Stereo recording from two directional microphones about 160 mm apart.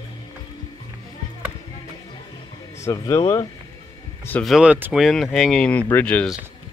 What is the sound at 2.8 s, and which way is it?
Speech, 20° left (ahead or behind).